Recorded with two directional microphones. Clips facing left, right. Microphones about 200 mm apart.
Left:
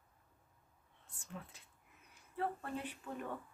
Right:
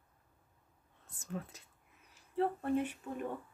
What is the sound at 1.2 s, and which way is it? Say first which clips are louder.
Speech: right 8 dB; 45° right (ahead or behind).